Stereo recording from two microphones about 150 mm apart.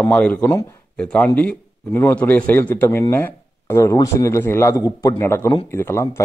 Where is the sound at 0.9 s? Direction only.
5° left (ahead or behind).